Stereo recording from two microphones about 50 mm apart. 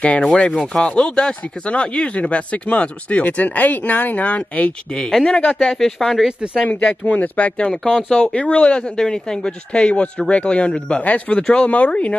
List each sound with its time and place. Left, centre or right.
0.0 s speech: left
0.5 s speech: centre; by 4.7 s left
4.9 s speech: centre
6.2 s speech: centre
7.1 s speech: left